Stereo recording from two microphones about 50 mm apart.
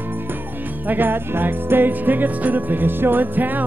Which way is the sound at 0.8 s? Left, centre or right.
Right.